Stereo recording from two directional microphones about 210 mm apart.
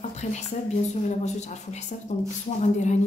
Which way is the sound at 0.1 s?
35° left (ahead or behind).